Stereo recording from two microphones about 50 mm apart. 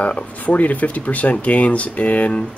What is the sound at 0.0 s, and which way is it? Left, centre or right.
Speech, left.